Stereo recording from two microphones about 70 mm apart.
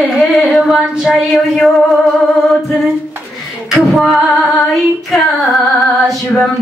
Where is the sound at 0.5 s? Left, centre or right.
Centre.